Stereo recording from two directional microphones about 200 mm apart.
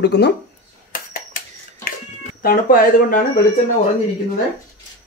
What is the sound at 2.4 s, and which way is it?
Speech, 45° left (ahead or behind).